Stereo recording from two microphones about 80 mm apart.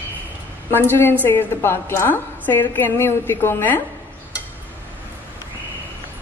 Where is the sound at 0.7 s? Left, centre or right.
Left.